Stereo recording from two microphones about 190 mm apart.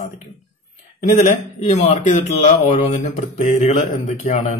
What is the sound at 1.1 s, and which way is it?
Speech, 40° left (ahead or behind).